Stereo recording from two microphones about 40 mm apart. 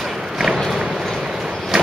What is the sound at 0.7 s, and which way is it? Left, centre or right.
Run, centre.